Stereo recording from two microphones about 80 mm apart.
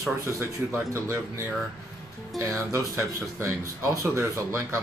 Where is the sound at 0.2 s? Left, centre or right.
Right.